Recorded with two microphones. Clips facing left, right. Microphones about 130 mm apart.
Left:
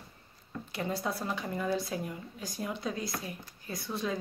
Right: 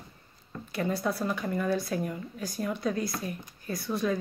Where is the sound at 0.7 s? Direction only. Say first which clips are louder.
Right 5 dB; 20° left (ahead or behind).